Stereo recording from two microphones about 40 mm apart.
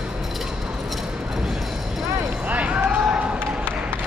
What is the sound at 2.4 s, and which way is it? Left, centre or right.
Run, right.